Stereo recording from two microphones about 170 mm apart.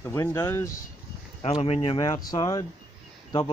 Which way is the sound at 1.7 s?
30° left (ahead or behind).